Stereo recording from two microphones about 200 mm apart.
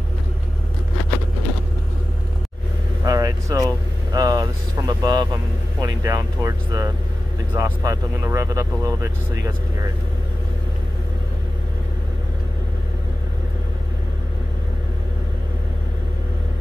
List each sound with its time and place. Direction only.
3.1 s vehicle: 15° right (ahead or behind)
4.1 s speech: 20° right (ahead or behind)